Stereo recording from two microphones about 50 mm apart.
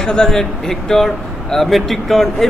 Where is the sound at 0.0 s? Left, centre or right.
Centre.